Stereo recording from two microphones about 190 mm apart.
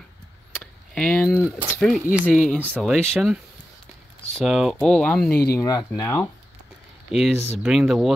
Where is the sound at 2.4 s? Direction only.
5° left (ahead or behind).